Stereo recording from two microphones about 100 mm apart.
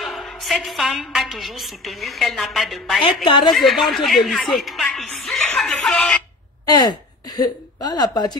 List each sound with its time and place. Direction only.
0.0 s a woman's voice: centre (ahead or behind)
6.6 s a woman's voice: 45° left (ahead or behind)